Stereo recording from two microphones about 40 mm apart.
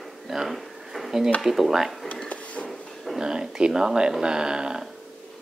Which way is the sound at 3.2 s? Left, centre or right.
Centre.